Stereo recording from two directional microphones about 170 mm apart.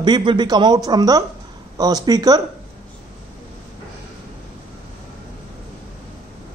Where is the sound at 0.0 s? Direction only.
25° right (ahead or behind).